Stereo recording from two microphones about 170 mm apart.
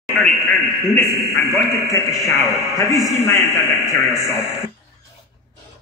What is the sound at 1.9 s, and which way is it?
A man's voice, 20° left (ahead or behind).